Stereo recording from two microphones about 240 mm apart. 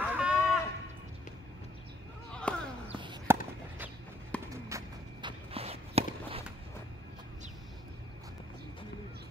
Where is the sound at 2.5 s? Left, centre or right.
Centre.